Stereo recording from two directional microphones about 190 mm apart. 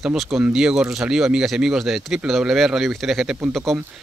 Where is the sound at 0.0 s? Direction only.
Centre (ahead or behind).